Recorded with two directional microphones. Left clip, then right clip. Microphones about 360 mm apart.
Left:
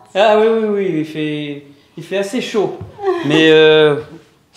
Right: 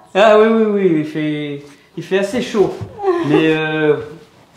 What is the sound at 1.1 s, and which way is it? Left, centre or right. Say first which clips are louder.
Speech: right 1 dB; right.